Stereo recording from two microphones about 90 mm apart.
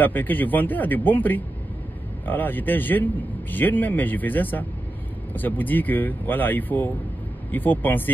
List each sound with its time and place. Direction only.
0.0 s a man's voice: 20° left (ahead or behind)